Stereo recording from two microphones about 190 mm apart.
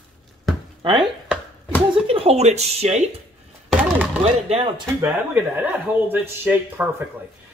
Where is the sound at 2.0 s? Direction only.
30° right (ahead or behind).